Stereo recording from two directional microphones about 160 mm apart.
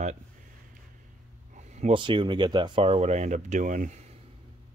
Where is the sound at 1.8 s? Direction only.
35° right (ahead or behind); by 4.0 s 50° right (ahead or behind).